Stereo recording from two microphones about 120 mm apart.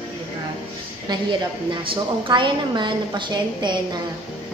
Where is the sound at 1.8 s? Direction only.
45° right (ahead or behind).